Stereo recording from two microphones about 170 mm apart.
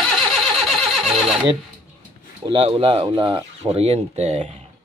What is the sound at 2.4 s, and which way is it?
Speech, 30° right (ahead or behind).